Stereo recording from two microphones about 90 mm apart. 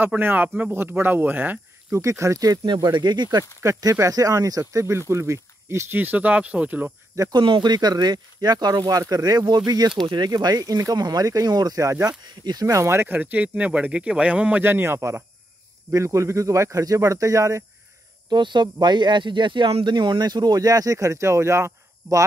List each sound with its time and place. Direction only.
0.0 s speech: 20° right (ahead or behind)
2.0 s speech: 35° right (ahead or behind); by 3.4 s 50° right (ahead or behind)
3.6 s speech: 35° right (ahead or behind); by 6.9 s 15° right (ahead or behind)
7.2 s speech: 45° right (ahead or behind)
7.4 s speech: 55° right (ahead or behind); by 17.6 s 35° right (ahead or behind)
18.3 s speech: 60° right (ahead or behind); by 22.2 s 30° right (ahead or behind)